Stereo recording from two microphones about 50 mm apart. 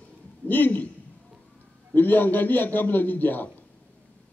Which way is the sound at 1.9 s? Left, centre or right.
Left.